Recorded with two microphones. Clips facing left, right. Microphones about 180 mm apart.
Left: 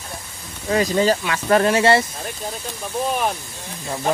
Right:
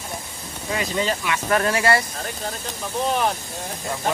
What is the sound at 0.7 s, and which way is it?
Speech, 40° left (ahead or behind).